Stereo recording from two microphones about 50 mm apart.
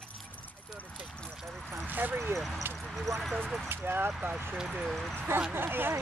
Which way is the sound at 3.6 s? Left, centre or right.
Right.